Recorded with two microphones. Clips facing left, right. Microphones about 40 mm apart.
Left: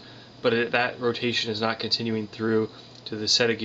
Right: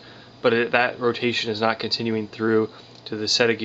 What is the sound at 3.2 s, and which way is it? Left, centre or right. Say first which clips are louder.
Speech: right 3 dB; centre.